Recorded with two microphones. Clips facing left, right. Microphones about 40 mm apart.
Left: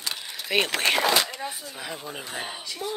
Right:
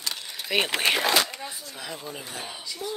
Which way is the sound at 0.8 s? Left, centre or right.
Centre.